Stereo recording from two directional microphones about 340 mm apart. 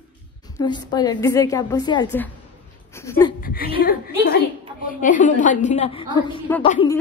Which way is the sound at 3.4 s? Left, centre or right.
Left.